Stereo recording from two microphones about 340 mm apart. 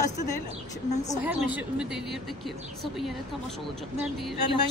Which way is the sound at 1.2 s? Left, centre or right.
Centre.